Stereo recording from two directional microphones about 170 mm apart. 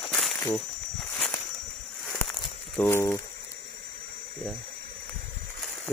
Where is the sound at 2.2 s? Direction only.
10° left (ahead or behind).